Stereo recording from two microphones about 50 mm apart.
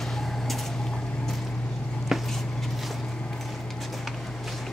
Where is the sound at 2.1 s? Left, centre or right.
Centre.